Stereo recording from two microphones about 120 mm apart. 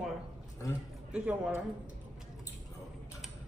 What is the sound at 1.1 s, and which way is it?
Speech, 10° right (ahead or behind).